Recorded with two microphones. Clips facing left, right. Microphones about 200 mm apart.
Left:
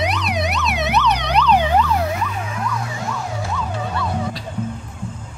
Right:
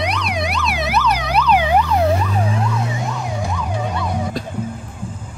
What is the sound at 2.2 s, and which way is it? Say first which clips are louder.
Emergency vehicle: right 5 dB; 35° right (ahead or behind).